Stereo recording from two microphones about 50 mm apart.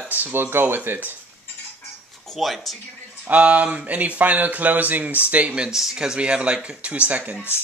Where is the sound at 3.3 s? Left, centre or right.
Right.